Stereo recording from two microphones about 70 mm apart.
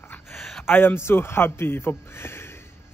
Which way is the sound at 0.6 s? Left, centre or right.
Left.